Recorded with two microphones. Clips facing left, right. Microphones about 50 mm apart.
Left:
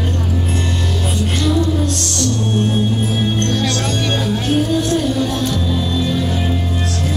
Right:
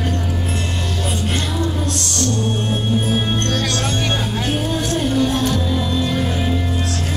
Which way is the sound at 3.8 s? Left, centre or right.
Right.